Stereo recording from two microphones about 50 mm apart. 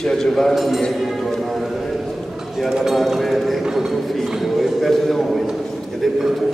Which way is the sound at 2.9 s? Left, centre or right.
Centre.